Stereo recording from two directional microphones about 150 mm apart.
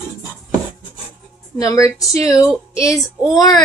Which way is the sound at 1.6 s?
20° left (ahead or behind).